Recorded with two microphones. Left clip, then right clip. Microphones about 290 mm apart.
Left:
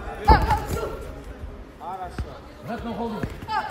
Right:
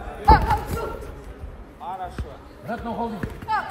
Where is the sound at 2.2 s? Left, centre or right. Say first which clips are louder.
Even; centre.